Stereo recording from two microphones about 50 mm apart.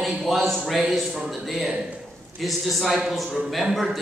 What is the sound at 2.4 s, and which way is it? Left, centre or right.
A man's voice, centre.